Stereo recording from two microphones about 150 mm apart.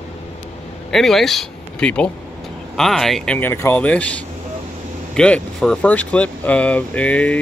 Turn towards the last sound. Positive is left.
turn(degrees=10)  # may be behind; listen again after turning